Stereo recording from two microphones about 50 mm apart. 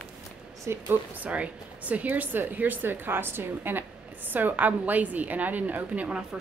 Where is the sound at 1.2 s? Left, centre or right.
Right.